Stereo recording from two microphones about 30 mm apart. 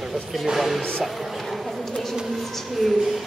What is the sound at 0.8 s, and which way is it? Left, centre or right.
Speech, left.